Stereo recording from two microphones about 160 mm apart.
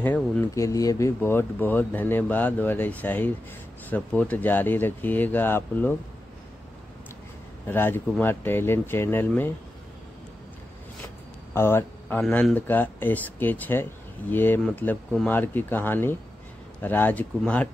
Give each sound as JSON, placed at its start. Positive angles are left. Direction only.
{"t": 0.0, "sound": "speech", "side_deg": 15}
{"t": 7.6, "sound": "speech", "side_deg": 15}
{"t": 11.5, "sound": "speech", "side_deg": 15}